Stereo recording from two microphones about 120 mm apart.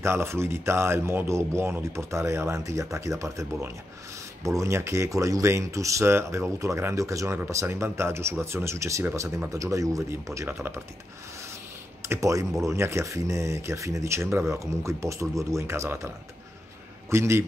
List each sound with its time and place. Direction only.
0.0 s speech: 20° right (ahead or behind)
12.0 s speech: 25° right (ahead or behind)
17.1 s speech: 20° right (ahead or behind)